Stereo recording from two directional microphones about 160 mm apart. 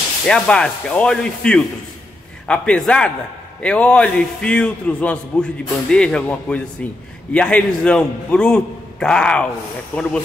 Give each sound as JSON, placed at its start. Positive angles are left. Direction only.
{"t": 0.3, "sound": "a man's voice", "side_deg": 5}